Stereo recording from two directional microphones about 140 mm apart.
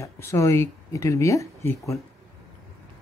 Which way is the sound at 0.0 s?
20° left (ahead or behind).